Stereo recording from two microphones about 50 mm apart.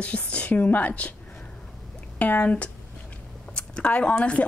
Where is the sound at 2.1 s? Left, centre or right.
Left.